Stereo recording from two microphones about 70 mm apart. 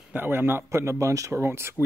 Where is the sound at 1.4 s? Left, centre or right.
Right.